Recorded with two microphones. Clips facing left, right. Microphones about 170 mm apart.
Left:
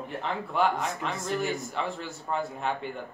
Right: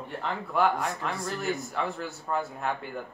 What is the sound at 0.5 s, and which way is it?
A man's voice, centre (ahead or behind).